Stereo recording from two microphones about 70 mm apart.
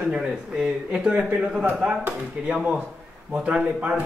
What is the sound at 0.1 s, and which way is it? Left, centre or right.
A man's voice, centre.